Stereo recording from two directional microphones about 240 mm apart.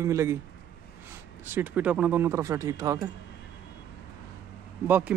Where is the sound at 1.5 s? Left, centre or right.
Centre.